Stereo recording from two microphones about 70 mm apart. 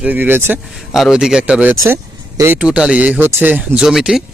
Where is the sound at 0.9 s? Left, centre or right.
Centre.